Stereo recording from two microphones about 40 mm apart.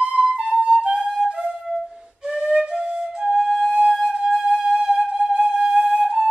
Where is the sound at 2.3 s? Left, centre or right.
Centre.